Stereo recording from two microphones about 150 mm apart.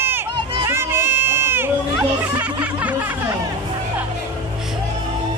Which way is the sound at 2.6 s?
10° right (ahead or behind).